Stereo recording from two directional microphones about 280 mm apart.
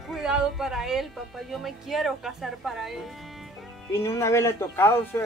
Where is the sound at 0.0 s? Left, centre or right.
Centre.